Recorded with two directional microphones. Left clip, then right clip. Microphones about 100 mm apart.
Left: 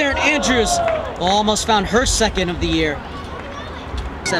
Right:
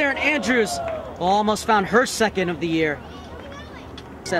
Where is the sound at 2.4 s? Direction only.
60° left (ahead or behind).